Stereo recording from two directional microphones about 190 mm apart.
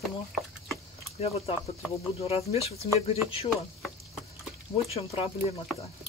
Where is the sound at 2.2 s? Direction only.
30° left (ahead or behind).